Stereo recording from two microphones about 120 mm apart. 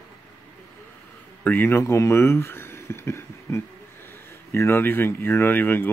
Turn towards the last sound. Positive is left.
turn(degrees=15)  # may be behind; listen again after turning